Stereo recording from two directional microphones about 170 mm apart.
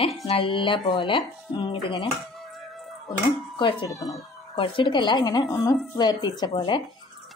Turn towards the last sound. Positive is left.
turn(degrees=25)  # may be behind; listen again after turning